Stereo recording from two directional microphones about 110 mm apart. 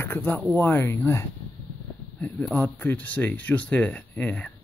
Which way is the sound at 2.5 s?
15° left (ahead or behind).